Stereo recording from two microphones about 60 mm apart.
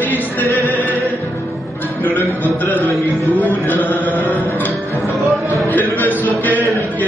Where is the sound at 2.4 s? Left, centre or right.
Left.